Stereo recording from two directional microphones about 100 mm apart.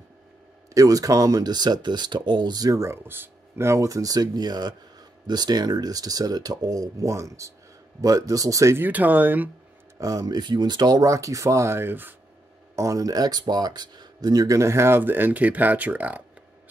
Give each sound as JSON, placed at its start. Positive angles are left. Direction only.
{"t": 0.7, "sound": "speech", "side_deg": -35}
{"t": 2.8, "sound": "speech", "side_deg": -25}
{"t": 8.8, "sound": "speech", "side_deg": -15}
{"t": 9.9, "sound": "speech", "side_deg": -35}
{"t": 12.7, "sound": "speech", "side_deg": -35}